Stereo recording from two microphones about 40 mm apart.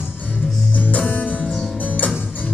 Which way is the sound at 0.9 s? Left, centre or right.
Left.